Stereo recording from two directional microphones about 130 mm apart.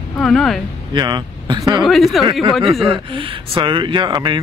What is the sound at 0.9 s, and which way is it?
Speech, 35° right (ahead or behind).